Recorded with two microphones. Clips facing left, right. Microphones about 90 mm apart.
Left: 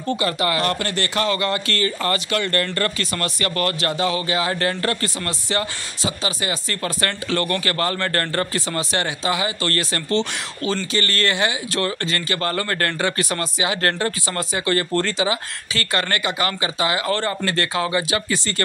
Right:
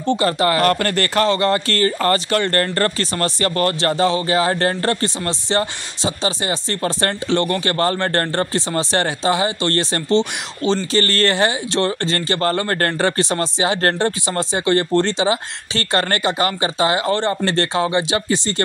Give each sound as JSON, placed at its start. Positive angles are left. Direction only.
{"t": 0.0, "sound": "speech", "side_deg": -30}
{"t": 1.3, "sound": "speech", "side_deg": -35}
{"t": 11.0, "sound": "speech", "side_deg": -35}